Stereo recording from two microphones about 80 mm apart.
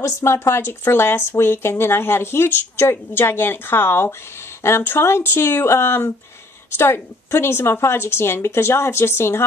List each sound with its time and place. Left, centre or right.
0.0 s a woman's voice: left